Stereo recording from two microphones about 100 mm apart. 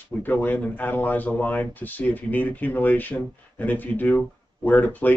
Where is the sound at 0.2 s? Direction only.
15° left (ahead or behind).